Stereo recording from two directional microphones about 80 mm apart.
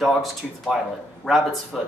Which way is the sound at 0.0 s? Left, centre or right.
Centre.